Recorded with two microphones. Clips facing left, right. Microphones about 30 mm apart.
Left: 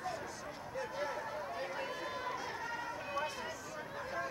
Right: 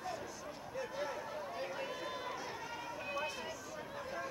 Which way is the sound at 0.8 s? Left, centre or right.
Centre.